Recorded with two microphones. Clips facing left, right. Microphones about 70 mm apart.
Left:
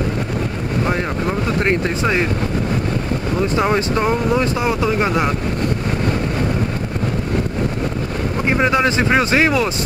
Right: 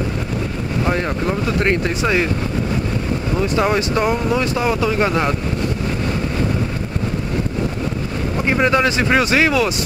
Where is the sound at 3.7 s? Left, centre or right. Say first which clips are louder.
Even; left.